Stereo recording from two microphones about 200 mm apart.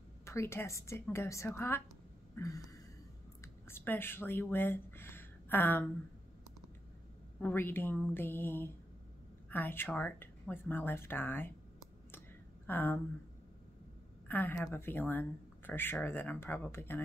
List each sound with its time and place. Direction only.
0.2 s speech: 15° left (ahead or behind)
2.3 s a sound: 15° left (ahead or behind)
3.6 s speech: 10° left (ahead or behind)
7.3 s speech: 10° left (ahead or behind)
12.6 s speech: 10° left (ahead or behind)
14.2 s speech: 10° left (ahead or behind)